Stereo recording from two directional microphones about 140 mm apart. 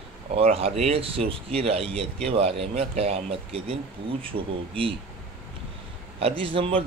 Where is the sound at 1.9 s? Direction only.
5° left (ahead or behind).